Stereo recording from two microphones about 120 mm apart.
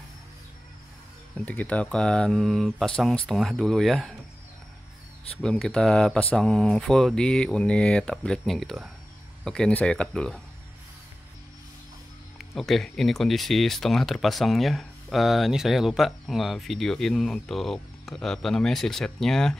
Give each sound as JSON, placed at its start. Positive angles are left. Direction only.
{"t": 1.3, "sound": "speech", "side_deg": 10}
{"t": 5.4, "sound": "speech", "side_deg": 10}
{"t": 12.4, "sound": "speech", "side_deg": 0}